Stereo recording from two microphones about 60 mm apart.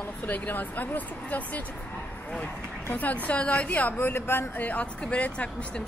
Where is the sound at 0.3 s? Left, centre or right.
Left.